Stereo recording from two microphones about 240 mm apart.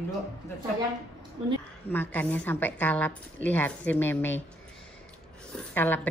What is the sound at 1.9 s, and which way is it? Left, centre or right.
A woman's voice, centre.